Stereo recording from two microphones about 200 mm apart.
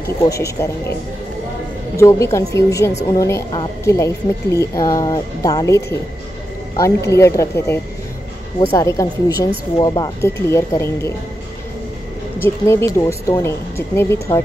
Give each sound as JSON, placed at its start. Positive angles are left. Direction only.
{"t": 0.0, "sound": "speech", "side_deg": 15}
{"t": 2.0, "sound": "speech", "side_deg": 15}
{"t": 2.9, "sound": "a woman's voice", "side_deg": 35}
{"t": 3.2, "sound": "speech", "side_deg": 15}
{"t": 12.4, "sound": "speech", "side_deg": 15}